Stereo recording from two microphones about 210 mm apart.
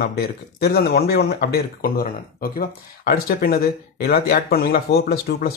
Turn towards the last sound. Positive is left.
turn(degrees=45)  # may be behind; listen again after turning